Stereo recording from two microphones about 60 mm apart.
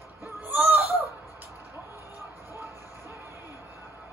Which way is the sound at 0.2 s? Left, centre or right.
Right.